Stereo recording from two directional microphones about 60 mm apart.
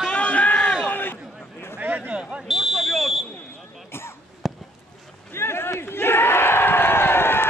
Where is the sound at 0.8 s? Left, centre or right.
Left.